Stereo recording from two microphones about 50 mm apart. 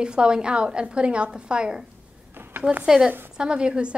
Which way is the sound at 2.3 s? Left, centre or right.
Right.